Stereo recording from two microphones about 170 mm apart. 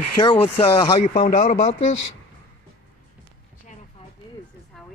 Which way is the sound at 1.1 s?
50° left (ahead or behind).